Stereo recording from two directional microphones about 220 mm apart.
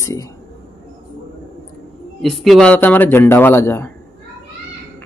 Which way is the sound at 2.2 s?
Centre (ahead or behind).